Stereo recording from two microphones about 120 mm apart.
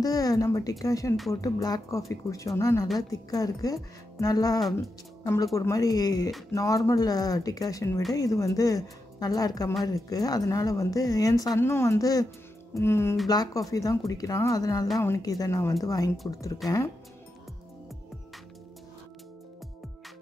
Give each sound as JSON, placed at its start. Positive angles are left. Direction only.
{"t": 0.0, "sound": "speech", "side_deg": 30}
{"t": 13.3, "sound": "speech", "side_deg": 30}